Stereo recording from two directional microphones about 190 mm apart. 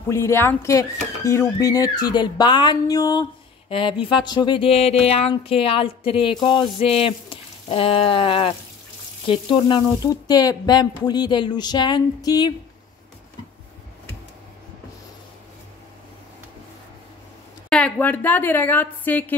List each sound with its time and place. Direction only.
0.1 s a woman's voice: 15° left (ahead or behind)
17.6 s a woman's voice: 5° left (ahead or behind)